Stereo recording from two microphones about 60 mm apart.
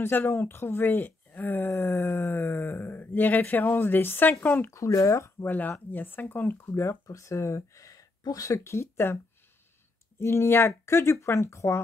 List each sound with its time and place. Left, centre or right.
0.0 s speech: left
1.7 s speech: left
4.6 s speech: left
5.4 s speech: left
6.7 s speech: left